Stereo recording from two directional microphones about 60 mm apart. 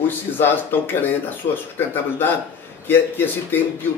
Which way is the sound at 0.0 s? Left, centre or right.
Left.